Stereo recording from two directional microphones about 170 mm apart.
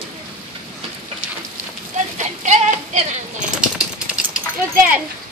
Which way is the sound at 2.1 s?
45° right (ahead or behind).